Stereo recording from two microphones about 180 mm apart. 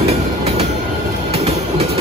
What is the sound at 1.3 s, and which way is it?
Train, 35° right (ahead or behind).